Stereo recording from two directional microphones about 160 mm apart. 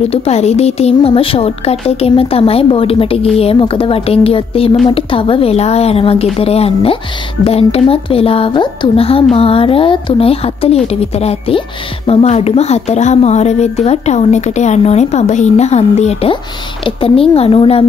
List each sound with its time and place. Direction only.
0.1 s a woman's voice: 40° left (ahead or behind)